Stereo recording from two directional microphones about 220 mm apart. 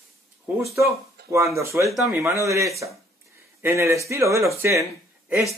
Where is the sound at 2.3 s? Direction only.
15° right (ahead or behind).